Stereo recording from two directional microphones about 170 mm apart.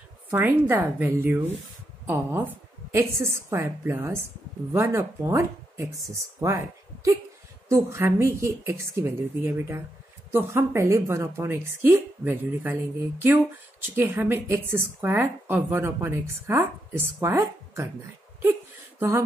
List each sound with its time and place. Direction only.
0.3 s speech: 10° right (ahead or behind)
7.6 s speech: 15° right (ahead or behind)
18.9 s a sound: 15° right (ahead or behind)